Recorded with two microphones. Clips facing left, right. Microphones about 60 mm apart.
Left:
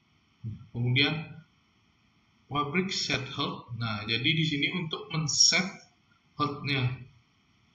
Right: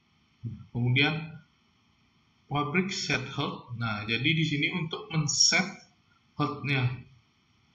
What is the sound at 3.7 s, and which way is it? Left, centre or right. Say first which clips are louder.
Speech: right 2 dB; centre.